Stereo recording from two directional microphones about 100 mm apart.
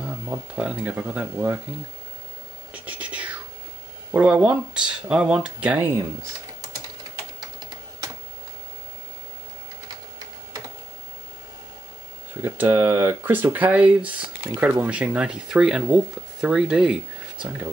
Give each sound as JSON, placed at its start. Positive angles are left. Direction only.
{"t": 0.6, "sound": "speech", "side_deg": -10}
{"t": 2.7, "sound": "whispering", "side_deg": -15}
{"t": 4.1, "sound": "speech", "side_deg": -10}
{"t": 12.4, "sound": "speech", "side_deg": -25}